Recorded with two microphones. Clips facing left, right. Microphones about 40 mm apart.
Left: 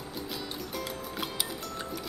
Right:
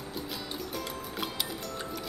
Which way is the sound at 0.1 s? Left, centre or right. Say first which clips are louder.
Left 1 dB; centre.